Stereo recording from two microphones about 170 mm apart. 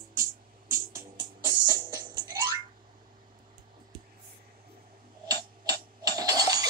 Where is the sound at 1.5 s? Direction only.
25° right (ahead or behind).